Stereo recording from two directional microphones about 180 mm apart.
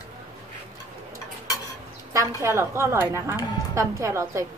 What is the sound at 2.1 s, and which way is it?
A woman's voice, 15° right (ahead or behind).